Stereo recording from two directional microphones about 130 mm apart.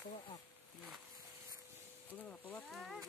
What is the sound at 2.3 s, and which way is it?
Wild animals, 15° left (ahead or behind).